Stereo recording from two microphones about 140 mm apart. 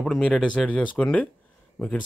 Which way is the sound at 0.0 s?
5° left (ahead or behind).